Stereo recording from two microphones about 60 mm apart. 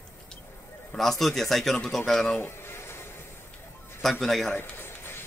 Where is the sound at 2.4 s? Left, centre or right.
Left.